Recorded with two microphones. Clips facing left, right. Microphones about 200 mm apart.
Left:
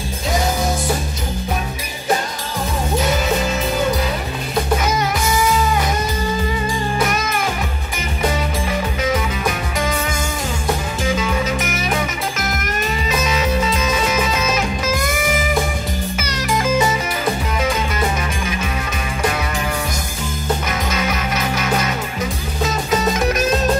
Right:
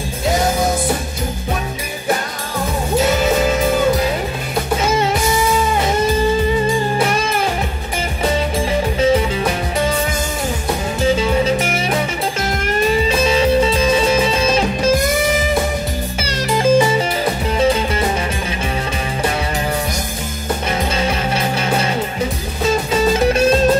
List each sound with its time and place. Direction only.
7.0 s music: 30° right (ahead or behind)
11.1 s music: 30° right (ahead or behind)
20.9 s music: 30° right (ahead or behind)